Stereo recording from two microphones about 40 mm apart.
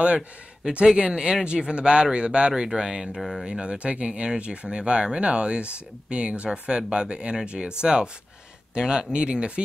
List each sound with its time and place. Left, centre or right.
0.9 s speech: right
3.2 s speech: centre
3.4 s speech: centre
3.7 s speech: right